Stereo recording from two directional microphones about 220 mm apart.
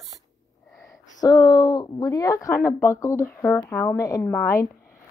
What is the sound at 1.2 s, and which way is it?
Speech, 20° left (ahead or behind).